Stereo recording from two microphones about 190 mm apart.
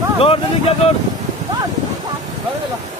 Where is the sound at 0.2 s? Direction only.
30° left (ahead or behind).